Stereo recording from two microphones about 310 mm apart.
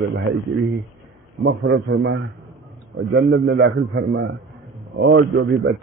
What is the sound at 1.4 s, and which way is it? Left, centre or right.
A man's voice, right.